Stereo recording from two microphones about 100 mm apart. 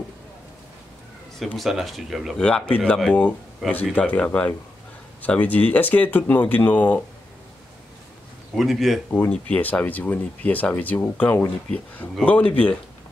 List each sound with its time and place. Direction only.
1.6 s speech: centre (ahead or behind)
2.4 s speech: 10° left (ahead or behind)
8.5 s speech: centre (ahead or behind)
9.3 s speech: 15° left (ahead or behind)